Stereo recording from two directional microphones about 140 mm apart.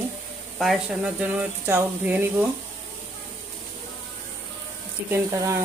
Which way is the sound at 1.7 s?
15° right (ahead or behind).